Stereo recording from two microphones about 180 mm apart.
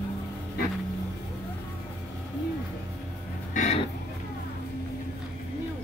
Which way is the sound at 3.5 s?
40° left (ahead or behind).